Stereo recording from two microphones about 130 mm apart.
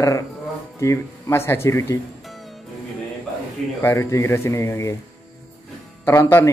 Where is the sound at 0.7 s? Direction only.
25° left (ahead or behind).